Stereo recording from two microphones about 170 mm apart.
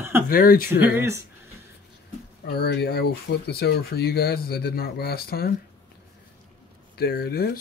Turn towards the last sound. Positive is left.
turn(degrees=65)  # may be behind; listen again after turning